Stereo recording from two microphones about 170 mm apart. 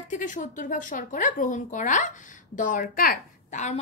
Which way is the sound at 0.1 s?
50° left (ahead or behind).